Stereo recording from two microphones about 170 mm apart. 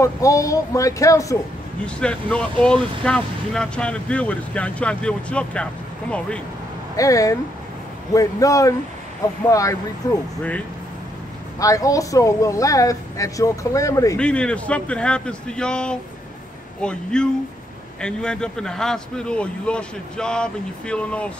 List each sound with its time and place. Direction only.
0.0 s speech: 20° left (ahead or behind)
1.9 s speech: 5° left (ahead or behind)
7.0 s speech: 20° left (ahead or behind)
11.6 s speech: 20° left (ahead or behind)
14.1 s a man's voice: 5° left (ahead or behind)